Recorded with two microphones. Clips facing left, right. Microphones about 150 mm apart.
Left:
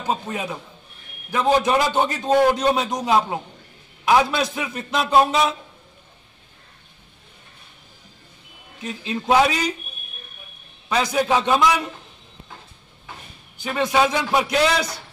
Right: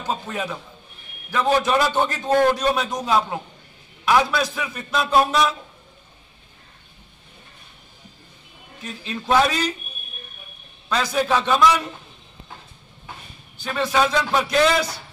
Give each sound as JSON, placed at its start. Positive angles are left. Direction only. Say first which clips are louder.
{"t": 0.0, "sound": "a man's voice", "louder": "left 1 dB", "side_deg": 15}
{"t": 8.8, "sound": "a man's voice", "louder": "left 3 dB", "side_deg": 20}
{"t": 10.9, "sound": "a man's voice", "louder": "left 1 dB", "side_deg": 15}
{"t": 13.6, "sound": "a man's voice", "louder": "left 1 dB", "side_deg": 15}